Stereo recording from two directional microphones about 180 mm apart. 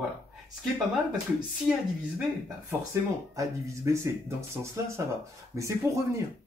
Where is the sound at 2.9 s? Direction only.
15° right (ahead or behind).